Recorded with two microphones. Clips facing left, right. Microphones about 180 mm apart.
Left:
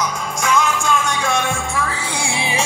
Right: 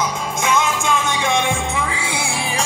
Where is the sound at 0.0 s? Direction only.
20° right (ahead or behind).